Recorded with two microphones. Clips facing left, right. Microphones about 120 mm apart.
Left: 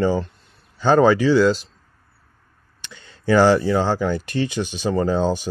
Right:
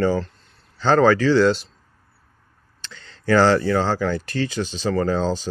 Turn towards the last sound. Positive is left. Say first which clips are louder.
# left 1 dB
turn(degrees=15)  # may be behind; listen again after turning